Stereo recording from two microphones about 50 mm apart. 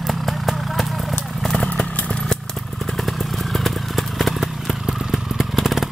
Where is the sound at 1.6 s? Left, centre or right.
Left.